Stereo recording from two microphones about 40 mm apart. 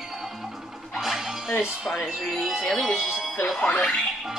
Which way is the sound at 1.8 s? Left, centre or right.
Centre.